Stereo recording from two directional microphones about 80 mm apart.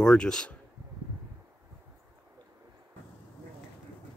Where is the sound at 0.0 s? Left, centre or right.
Centre.